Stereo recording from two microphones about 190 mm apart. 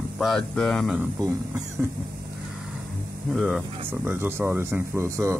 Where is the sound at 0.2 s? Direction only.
Centre (ahead or behind).